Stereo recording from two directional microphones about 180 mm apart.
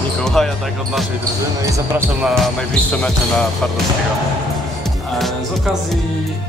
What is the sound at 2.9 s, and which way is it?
Speech, 10° left (ahead or behind).